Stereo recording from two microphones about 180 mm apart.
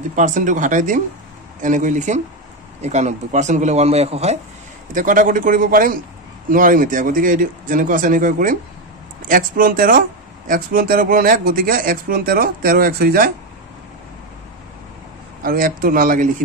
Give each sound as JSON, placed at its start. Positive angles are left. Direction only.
{"t": 0.1, "sound": "speech", "side_deg": -45}
{"t": 4.9, "sound": "speech", "side_deg": -50}
{"t": 15.4, "sound": "speech", "side_deg": -50}